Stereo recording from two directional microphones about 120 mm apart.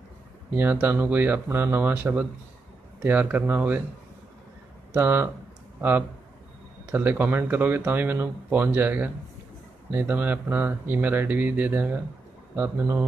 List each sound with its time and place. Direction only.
0.6 s speech: 15° right (ahead or behind)
4.9 s speech: 20° right (ahead or behind)